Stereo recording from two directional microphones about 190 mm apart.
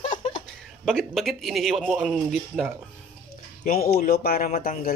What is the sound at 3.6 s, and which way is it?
Speech, 50° left (ahead or behind).